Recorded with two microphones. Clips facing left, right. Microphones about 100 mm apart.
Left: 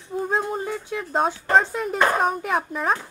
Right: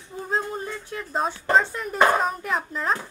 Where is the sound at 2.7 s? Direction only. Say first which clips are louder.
Left 2 dB; 10° left (ahead or behind).